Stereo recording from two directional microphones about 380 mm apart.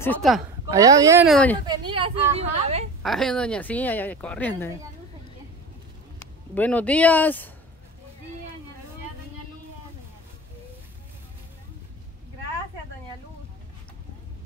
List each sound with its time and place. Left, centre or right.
0.0 s speech: centre
1.7 s a woman's voice: centre
3.0 s speech: centre
6.5 s speech: centre